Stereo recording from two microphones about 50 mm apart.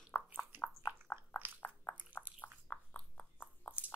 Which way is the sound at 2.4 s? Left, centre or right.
Left.